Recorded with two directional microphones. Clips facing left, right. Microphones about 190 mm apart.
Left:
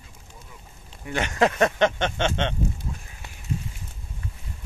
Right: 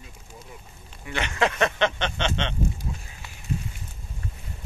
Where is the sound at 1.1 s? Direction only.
45° left (ahead or behind).